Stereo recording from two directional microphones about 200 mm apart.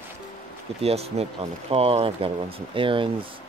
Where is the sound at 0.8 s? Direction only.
30° right (ahead or behind).